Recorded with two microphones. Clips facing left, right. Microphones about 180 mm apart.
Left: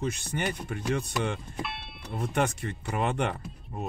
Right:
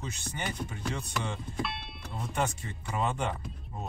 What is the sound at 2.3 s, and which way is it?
Speech, 65° left (ahead or behind).